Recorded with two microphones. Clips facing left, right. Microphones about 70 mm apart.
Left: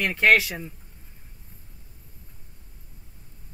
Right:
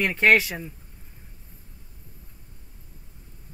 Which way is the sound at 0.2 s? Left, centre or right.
Centre.